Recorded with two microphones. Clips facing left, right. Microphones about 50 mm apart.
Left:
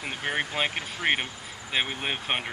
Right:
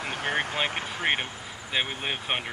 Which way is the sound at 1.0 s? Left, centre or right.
Centre.